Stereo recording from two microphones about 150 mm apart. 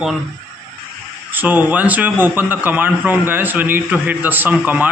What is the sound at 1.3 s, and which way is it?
A man's voice, 10° right (ahead or behind).